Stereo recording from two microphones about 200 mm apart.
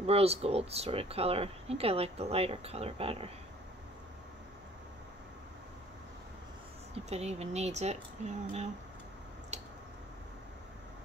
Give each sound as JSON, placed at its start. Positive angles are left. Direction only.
{"t": 0.0, "sound": "speech", "side_deg": -30}
{"t": 7.1, "sound": "speech", "side_deg": -30}
{"t": 9.5, "sound": "squish", "side_deg": -35}